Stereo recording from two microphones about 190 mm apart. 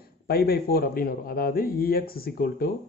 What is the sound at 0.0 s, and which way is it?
Speech, 55° left (ahead or behind).